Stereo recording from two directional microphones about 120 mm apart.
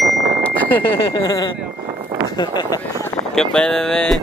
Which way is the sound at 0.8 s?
45° left (ahead or behind).